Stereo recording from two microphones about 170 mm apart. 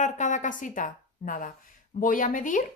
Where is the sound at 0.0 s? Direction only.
45° left (ahead or behind).